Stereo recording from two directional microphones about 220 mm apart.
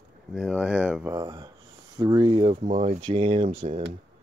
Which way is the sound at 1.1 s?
20° right (ahead or behind).